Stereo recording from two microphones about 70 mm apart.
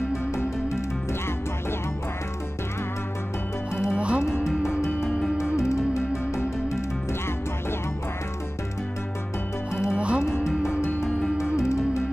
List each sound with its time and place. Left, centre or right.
0.3 s music: left
3.9 s music: centre
5.0 s music: centre
5.6 s music: left
9.8 s music: centre
10.7 s music: left